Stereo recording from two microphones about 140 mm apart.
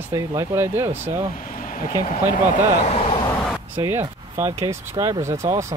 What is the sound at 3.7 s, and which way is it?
Speech, 20° right (ahead or behind).